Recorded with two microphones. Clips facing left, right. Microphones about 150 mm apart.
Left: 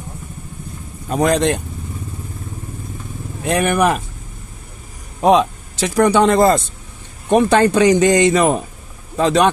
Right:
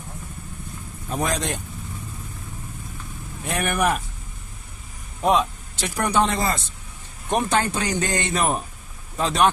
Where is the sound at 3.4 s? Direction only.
90° left.